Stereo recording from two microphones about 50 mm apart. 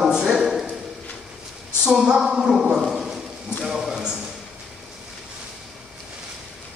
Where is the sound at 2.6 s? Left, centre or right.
Centre.